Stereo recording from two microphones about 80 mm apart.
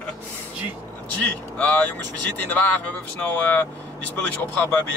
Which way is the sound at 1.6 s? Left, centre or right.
Centre.